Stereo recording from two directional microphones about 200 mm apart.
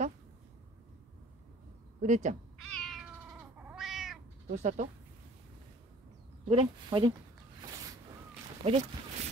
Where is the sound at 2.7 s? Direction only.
Centre (ahead or behind).